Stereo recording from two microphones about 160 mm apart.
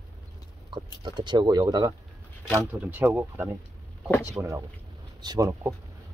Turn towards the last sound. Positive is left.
turn(degrees=-20)  # may be behind; listen again after turning